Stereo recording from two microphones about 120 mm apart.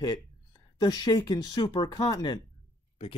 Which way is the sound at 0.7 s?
35° left (ahead or behind).